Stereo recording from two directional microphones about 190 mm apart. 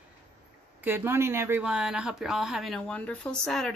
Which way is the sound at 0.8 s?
10° right (ahead or behind).